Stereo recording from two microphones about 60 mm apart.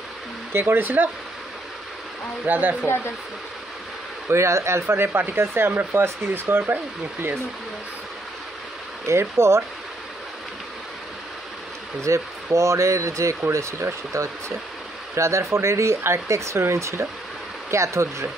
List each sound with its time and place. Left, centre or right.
0.5 s speech: right
2.4 s speech: right
4.3 s speech: right
9.0 s speech: right
12.0 s speech: right